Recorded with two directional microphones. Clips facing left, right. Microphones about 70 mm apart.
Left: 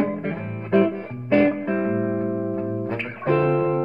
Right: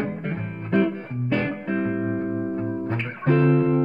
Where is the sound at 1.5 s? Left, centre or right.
Centre.